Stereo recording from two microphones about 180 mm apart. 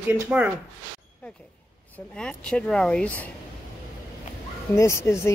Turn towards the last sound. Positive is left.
turn(degrees=15)  # may be behind; listen again after turning